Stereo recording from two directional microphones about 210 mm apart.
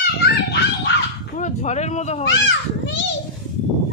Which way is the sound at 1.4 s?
35° left (ahead or behind).